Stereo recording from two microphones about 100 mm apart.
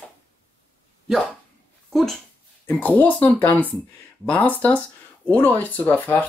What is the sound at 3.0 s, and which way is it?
Speech, 15° left (ahead or behind).